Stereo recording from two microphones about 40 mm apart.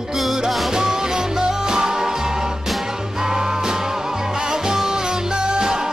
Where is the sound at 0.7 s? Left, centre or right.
Centre.